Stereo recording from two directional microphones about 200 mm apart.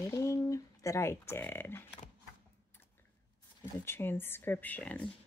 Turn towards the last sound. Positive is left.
turn(degrees=5)  # may be behind; listen again after turning